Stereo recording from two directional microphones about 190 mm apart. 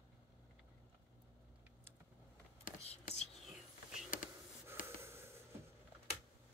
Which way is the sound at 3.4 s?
Centre (ahead or behind).